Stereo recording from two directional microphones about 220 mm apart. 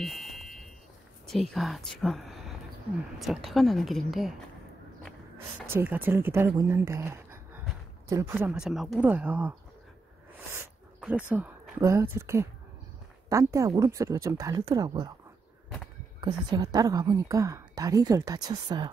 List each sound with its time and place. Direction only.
0.0 s a sound: centre (ahead or behind)
1.2 s a woman's voice: centre (ahead or behind)
5.7 s a woman's voice: 10° right (ahead or behind)
16.2 s a woman's voice: 20° right (ahead or behind)